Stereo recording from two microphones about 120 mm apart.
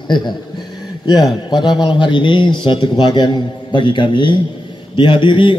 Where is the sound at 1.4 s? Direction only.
40° left (ahead or behind).